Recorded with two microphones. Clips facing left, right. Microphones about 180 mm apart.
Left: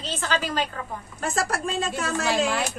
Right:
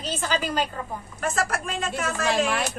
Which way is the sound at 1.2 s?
30° left (ahead or behind).